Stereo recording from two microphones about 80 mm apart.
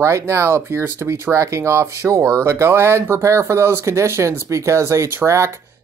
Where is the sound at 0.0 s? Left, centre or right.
Right.